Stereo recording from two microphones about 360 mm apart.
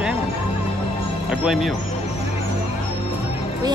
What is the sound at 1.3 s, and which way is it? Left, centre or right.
Speech, centre.